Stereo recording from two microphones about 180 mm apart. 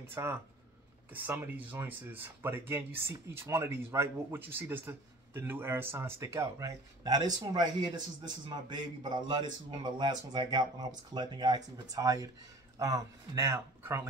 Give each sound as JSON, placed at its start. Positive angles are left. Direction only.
{"t": 0.0, "sound": "a man's voice", "side_deg": -15}